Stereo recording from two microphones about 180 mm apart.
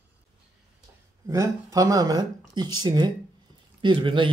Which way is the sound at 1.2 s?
15° right (ahead or behind).